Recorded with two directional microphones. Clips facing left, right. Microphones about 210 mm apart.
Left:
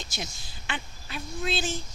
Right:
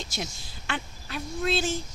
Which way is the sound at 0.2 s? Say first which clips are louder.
Right 1 dB; centre (ahead or behind).